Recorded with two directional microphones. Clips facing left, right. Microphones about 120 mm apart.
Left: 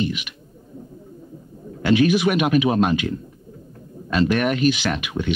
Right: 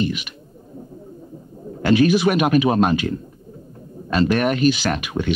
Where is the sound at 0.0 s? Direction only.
40° right (ahead or behind).